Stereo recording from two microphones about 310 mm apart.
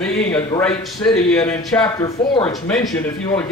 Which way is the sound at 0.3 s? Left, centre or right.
Centre.